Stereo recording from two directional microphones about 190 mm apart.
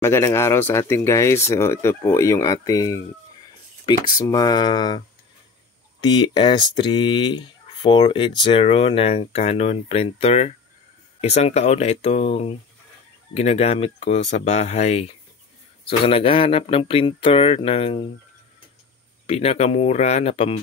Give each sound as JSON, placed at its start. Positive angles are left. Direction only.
{"t": 0.0, "sound": "speech", "side_deg": 15}
{"t": 19.2, "sound": "speech", "side_deg": 30}